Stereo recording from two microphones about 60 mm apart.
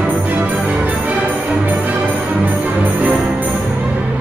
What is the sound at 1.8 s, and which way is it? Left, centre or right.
Music, centre.